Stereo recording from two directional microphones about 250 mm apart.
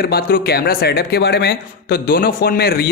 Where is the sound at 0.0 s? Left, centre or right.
Left.